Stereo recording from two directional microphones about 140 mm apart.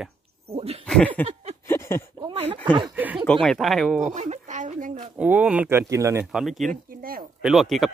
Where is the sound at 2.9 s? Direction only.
10° right (ahead or behind).